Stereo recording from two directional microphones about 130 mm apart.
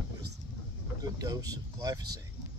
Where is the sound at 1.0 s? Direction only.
30° right (ahead or behind).